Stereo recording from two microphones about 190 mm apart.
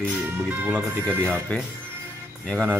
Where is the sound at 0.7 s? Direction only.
5° left (ahead or behind).